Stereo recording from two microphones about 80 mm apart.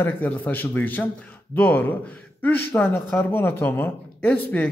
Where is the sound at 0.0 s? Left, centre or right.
Left.